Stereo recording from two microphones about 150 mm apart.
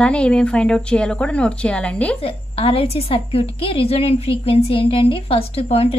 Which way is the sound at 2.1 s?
40° left (ahead or behind).